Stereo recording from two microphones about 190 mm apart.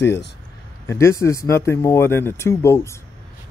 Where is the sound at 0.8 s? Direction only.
15° left (ahead or behind).